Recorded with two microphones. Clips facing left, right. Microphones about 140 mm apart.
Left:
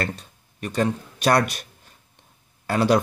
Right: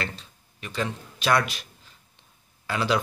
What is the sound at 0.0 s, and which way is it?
Speech, 55° left (ahead or behind).